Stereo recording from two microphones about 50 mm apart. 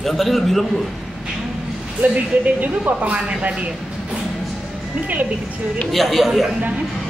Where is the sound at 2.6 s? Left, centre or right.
Right.